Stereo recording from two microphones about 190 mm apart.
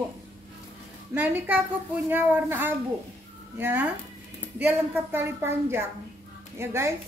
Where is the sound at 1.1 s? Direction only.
10° right (ahead or behind).